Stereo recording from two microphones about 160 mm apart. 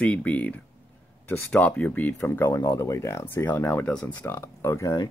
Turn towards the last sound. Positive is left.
turn(degrees=20)  # may be behind; listen again after turning